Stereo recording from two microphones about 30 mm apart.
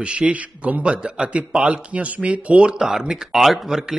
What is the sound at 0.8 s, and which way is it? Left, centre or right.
Speech, right.